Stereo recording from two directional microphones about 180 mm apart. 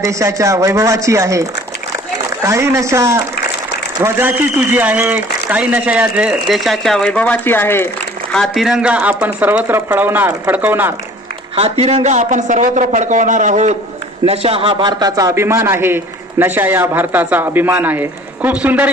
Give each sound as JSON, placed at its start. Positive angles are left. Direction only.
{"t": 0.0, "sound": "a man's voice", "side_deg": -15}
{"t": 11.8, "sound": "a man's voice", "side_deg": -35}